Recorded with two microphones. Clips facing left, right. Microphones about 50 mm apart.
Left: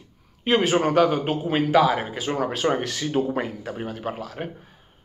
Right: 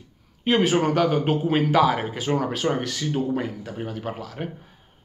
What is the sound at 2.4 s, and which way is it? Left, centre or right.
Speech, left.